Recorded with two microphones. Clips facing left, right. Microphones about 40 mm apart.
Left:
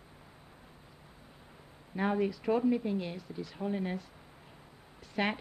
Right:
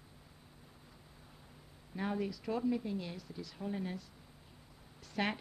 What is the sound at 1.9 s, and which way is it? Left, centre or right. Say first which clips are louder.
Speech: left 7 dB; left.